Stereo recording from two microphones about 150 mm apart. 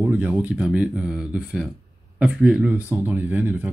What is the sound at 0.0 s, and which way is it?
Speech, 10° right (ahead or behind).